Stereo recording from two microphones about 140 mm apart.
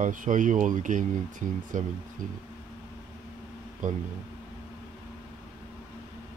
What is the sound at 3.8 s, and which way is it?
Speech, 70° right (ahead or behind).